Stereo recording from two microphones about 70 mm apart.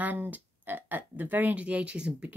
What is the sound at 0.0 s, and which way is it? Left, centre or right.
Speech, right.